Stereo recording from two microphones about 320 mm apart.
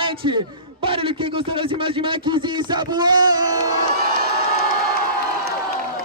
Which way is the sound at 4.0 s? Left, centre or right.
Right.